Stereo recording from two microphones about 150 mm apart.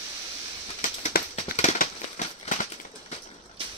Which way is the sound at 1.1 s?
90° left.